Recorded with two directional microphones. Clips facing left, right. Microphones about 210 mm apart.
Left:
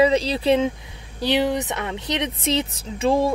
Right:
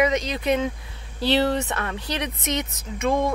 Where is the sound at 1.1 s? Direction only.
15° left (ahead or behind).